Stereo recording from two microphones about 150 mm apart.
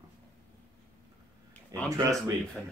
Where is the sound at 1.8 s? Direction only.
25° right (ahead or behind).